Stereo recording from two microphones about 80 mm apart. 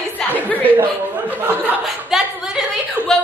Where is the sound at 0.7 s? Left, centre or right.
Right.